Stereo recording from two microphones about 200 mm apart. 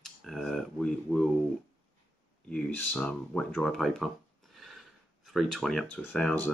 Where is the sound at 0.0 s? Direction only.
Centre (ahead or behind).